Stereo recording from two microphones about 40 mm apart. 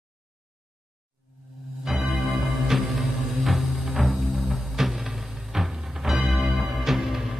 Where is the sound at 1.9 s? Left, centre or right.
Centre.